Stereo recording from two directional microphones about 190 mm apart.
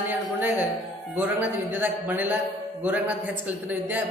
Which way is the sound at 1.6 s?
10° right (ahead or behind).